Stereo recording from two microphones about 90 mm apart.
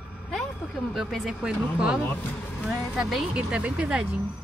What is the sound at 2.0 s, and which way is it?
Speech, 20° left (ahead or behind).